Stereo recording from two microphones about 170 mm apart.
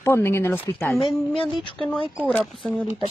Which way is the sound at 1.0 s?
30° left (ahead or behind).